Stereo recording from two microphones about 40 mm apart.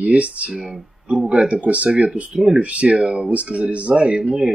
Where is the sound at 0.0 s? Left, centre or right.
Right.